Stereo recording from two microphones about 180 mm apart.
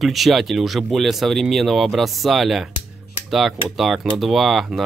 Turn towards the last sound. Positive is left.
turn(degrees=0)  # may be behind; listen again after turning